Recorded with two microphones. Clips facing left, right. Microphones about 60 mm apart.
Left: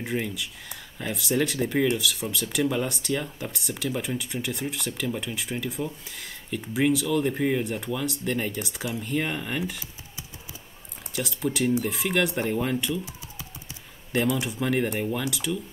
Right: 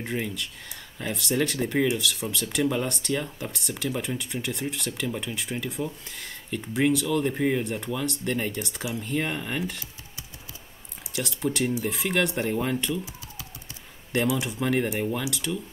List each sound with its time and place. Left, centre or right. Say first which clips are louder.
0.0 s speech: left 1 dB; centre
11.1 s speech: even; centre
14.1 s speech: even; centre